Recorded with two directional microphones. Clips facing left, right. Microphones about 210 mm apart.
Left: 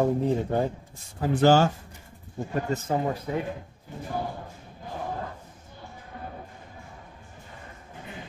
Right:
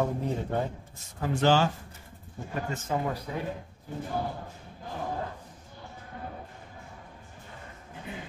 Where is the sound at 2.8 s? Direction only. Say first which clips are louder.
Left 1 dB; 30° left (ahead or behind).